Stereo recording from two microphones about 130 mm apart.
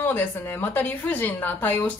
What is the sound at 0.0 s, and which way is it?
A woman's voice, 15° left (ahead or behind).